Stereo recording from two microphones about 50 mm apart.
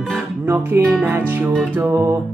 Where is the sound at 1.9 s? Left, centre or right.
Right.